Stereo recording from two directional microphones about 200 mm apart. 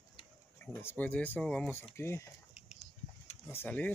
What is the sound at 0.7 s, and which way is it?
Speech, 10° left (ahead or behind).